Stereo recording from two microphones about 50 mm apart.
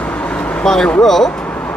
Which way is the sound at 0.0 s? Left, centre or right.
Left.